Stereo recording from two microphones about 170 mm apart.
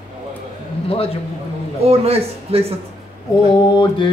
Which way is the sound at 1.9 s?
35° right (ahead or behind).